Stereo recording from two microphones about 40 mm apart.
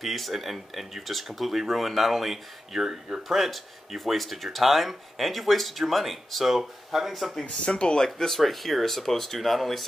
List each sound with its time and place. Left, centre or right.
0.0 s speech: centre
7.4 s speech: left
8.4 s speech: centre